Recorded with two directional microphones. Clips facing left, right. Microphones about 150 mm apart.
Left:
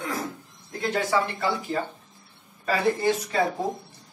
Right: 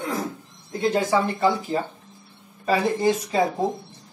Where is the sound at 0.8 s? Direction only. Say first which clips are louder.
Right 4 dB; 20° right (ahead or behind).